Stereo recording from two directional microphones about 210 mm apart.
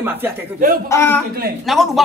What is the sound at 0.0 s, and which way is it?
Speech, 10° right (ahead or behind).